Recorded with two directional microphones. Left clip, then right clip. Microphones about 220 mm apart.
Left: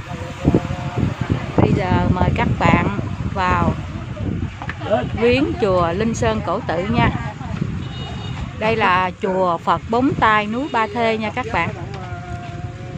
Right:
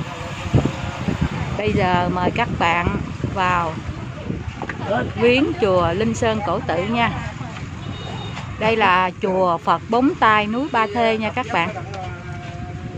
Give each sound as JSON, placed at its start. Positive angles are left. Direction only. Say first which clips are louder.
{"t": 1.6, "sound": "speech", "louder": "even", "side_deg": -15}
{"t": 5.2, "sound": "speech", "louder": "right 2 dB", "side_deg": 0}
{"t": 8.5, "sound": "speech", "louder": "even", "side_deg": 0}